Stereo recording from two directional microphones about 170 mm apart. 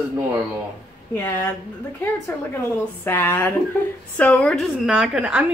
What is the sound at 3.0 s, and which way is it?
A woman's voice, 10° left (ahead or behind).